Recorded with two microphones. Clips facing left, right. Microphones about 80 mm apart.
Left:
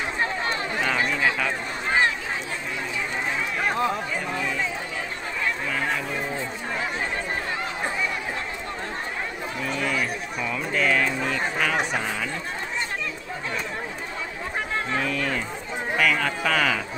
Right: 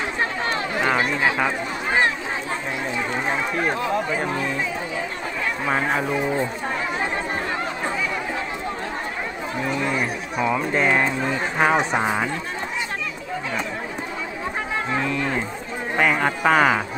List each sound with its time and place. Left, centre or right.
0.8 s run: right
10.4 s speech: right
14.9 s speech: centre